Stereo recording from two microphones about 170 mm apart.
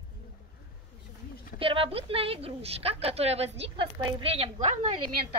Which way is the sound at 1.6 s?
30° right (ahead or behind).